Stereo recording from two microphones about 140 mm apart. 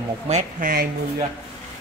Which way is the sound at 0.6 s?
90° right.